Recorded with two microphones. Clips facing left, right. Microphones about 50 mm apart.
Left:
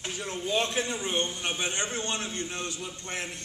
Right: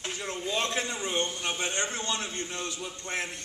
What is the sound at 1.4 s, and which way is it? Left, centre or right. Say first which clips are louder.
Speech: even; right.